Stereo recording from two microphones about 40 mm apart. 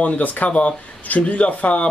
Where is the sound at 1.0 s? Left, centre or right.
Left.